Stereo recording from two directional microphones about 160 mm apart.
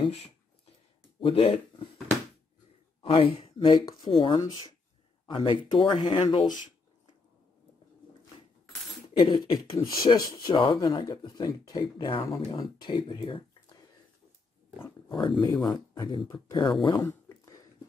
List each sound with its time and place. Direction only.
1.2 s speech: 35° left (ahead or behind)
3.0 s speech: 35° left (ahead or behind)
9.2 s speech: 25° left (ahead or behind)
15.0 s speech: 30° left (ahead or behind)
17.0 s a sound: 15° left (ahead or behind)